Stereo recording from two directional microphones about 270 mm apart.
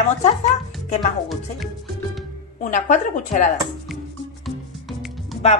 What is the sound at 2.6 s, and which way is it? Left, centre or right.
Speech, left.